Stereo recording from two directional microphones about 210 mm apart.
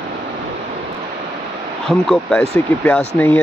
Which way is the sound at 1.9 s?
Centre (ahead or behind).